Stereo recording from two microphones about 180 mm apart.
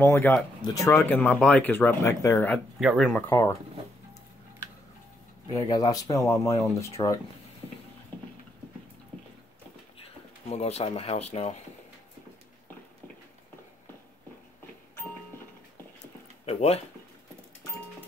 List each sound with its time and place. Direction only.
0.0 s speech: 10° left (ahead or behind)
2.8 s speech: centre (ahead or behind)
3.2 s speech: 15° left (ahead or behind)
5.5 s speech: 20° left (ahead or behind)
10.5 s speech: 35° left (ahead or behind)
16.4 s speech: 35° left (ahead or behind)